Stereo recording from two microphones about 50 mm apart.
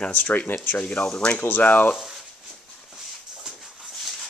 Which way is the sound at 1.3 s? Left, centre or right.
Left.